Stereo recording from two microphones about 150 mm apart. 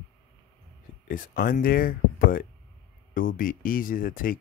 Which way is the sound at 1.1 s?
70° left (ahead or behind).